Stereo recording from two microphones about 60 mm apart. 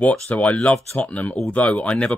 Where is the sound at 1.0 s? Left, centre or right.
Left.